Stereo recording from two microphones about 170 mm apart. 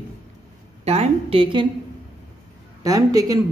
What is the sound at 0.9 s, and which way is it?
Speech, 35° right (ahead or behind).